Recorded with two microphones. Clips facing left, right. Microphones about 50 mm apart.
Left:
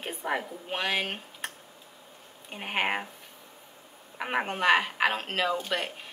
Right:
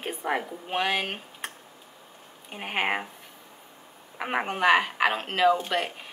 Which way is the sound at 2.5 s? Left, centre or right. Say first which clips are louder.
Right 1 dB; centre.